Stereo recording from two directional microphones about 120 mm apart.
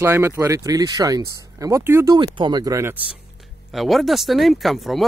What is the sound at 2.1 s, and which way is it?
Speech, 40° right (ahead or behind).